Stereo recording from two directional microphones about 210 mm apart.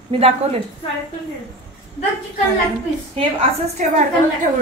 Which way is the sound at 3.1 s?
30° right (ahead or behind).